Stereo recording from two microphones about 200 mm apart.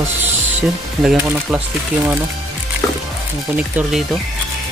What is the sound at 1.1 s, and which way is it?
Speech, 5° right (ahead or behind).